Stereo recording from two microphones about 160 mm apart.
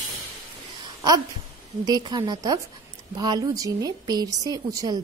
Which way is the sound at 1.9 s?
25° right (ahead or behind).